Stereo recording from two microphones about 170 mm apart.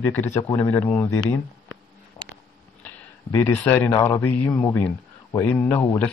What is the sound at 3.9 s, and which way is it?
A man's voice, 20° left (ahead or behind).